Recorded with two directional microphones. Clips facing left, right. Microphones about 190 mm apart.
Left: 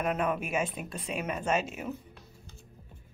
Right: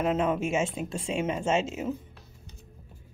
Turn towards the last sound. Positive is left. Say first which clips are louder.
# right 3 dB
turn(degrees=-25)  # may be behind; listen again after turning